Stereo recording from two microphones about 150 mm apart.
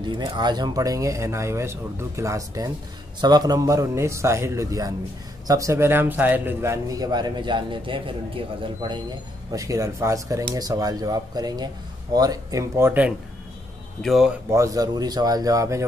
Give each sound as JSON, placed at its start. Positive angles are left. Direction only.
{"t": 0.0, "sound": "speech", "side_deg": -30}
{"t": 9.5, "sound": "speech", "side_deg": -20}
{"t": 14.0, "sound": "speech", "side_deg": 0}
{"t": 14.5, "sound": "speech", "side_deg": -20}